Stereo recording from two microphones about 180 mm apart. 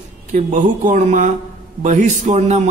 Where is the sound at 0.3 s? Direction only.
45° right (ahead or behind).